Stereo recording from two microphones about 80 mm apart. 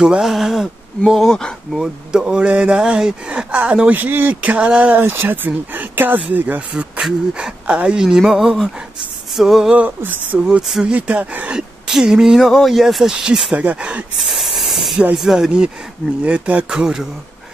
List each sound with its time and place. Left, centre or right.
0.0 s speech: centre
1.8 s speech: centre
5.0 s speech: right; by 9.8 s centre
9.8 s speech: centre
10.4 s speech: centre
11.9 s speech: centre
14.2 s hiss: centre
15.1 s speech: centre